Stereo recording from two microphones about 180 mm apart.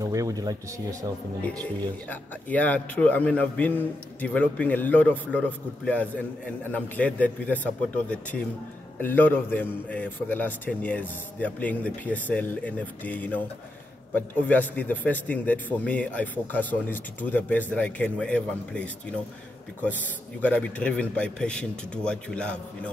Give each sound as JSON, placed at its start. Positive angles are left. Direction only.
{"t": 0.0, "sound": "speech", "side_deg": -20}
{"t": 1.4, "sound": "a man's voice", "side_deg": 10}
{"t": 20.4, "sound": "a man's voice", "side_deg": 10}